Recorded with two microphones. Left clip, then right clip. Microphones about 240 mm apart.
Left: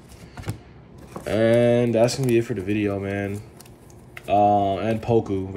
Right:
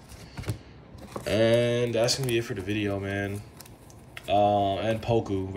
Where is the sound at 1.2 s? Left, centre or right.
Centre.